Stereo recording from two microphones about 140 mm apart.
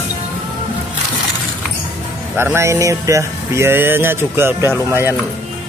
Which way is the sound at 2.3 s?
20° right (ahead or behind).